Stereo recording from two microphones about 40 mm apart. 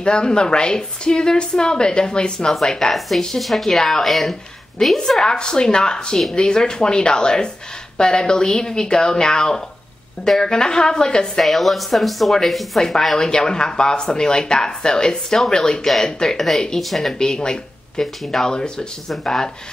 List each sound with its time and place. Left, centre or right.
0.0 s speech: left
3.3 s speech: centre
4.9 s speech: centre
11.3 s speech: centre
13.3 s speech: centre
17.2 s speech: centre
18.0 s speech: centre
18.4 s speech: centre